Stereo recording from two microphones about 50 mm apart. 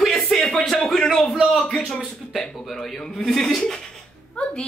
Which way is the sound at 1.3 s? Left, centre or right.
Centre.